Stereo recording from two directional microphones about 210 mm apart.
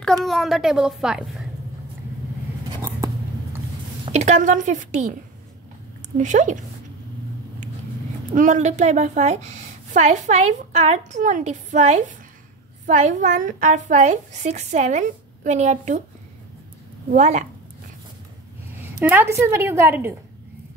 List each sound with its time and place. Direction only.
0.0 s a child's voice: centre (ahead or behind)
4.0 s a woman's voice: 30° right (ahead or behind)
6.1 s a woman's voice: 35° right (ahead or behind)
8.4 s a woman's voice: 35° right (ahead or behind)
17.1 s a woman's voice: 35° right (ahead or behind)
18.9 s a woman's voice: 10° right (ahead or behind)